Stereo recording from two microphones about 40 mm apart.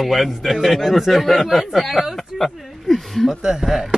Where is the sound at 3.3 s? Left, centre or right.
Centre.